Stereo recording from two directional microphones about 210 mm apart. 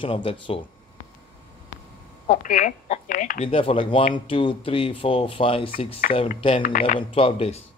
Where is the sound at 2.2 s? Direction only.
40° left (ahead or behind).